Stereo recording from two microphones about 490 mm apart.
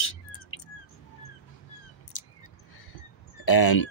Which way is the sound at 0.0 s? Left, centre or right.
Left.